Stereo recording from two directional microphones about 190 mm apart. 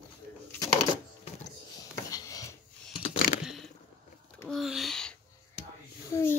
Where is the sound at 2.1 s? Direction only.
20° left (ahead or behind).